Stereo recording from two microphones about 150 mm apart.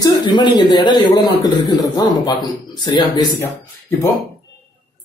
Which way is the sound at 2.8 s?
30° left (ahead or behind).